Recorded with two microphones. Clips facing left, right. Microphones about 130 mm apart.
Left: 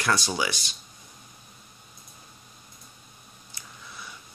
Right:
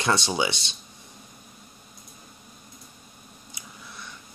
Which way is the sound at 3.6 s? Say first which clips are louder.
Right 1 dB; 20° right (ahead or behind).